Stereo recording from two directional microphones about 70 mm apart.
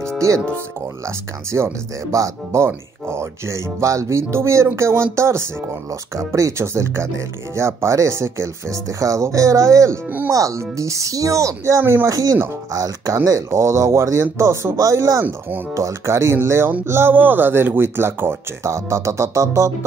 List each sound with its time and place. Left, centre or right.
1.0 s speech: right
11.8 s speech: right
12.1 s speech: right